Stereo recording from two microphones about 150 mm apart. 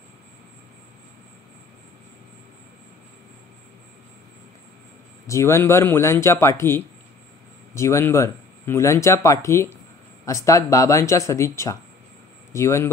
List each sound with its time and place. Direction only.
5.2 s speech: 20° left (ahead or behind)